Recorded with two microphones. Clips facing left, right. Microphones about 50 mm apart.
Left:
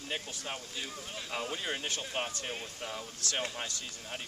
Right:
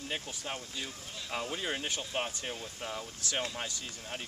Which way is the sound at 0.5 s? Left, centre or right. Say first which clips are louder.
Right 1 dB; centre.